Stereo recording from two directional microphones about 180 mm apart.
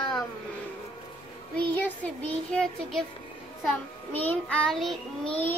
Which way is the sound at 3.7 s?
10° left (ahead or behind).